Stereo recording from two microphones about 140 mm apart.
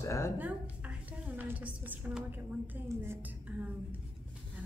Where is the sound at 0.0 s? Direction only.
20° left (ahead or behind).